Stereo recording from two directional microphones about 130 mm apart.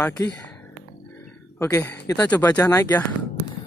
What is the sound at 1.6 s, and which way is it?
Speech, 25° left (ahead or behind).